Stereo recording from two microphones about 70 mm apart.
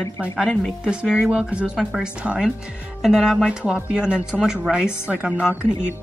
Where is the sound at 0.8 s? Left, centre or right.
Centre.